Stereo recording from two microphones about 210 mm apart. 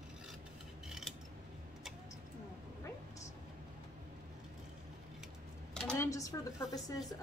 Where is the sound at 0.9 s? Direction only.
Centre (ahead or behind).